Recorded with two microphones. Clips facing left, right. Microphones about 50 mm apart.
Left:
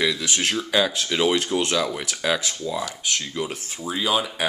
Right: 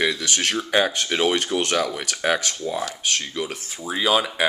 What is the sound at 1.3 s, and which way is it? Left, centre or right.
Speech, right.